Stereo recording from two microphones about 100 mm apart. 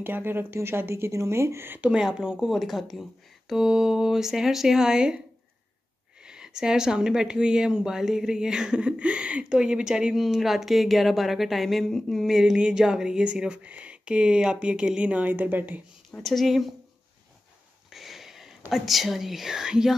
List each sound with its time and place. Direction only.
0.0 s speech: 20° right (ahead or behind)
1.9 s speech: 5° right (ahead or behind)
6.2 s speech: 5° right (ahead or behind)
16.2 s speech: centre (ahead or behind)
17.8 s a sound: centre (ahead or behind)
18.7 s speech: centre (ahead or behind)